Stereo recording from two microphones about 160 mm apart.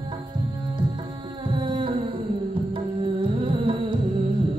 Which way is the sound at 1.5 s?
30° right (ahead or behind).